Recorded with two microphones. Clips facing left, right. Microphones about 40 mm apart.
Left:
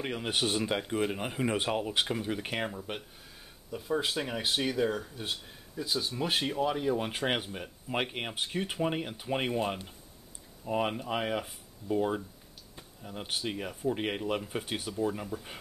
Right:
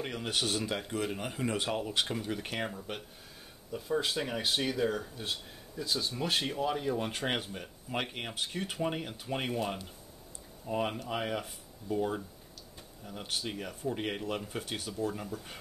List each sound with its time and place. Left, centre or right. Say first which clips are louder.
0.0 s speech: left 2 dB; centre